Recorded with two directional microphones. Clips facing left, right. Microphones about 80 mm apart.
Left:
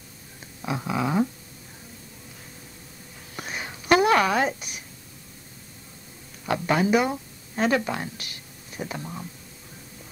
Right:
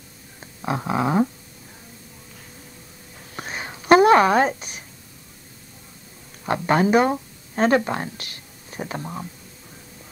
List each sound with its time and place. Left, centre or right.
0.7 s dog: right
3.3 s a sound: right
6.4 s speech: right